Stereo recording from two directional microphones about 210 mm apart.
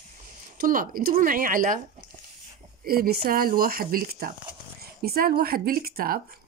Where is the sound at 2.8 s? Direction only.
45° right (ahead or behind).